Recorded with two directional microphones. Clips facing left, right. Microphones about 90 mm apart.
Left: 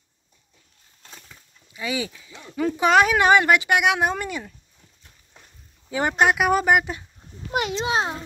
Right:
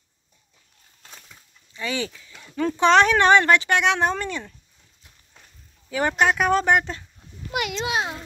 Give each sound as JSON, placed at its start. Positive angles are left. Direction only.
{"t": 1.7, "sound": "speech", "side_deg": 10}
{"t": 5.9, "sound": "speech", "side_deg": 20}
{"t": 6.2, "sound": "speech", "side_deg": 10}
{"t": 7.8, "sound": "a child's voice", "side_deg": 30}